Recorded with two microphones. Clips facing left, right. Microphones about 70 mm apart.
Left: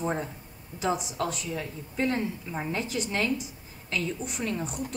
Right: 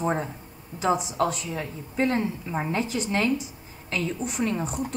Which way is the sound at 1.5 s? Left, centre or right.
Centre.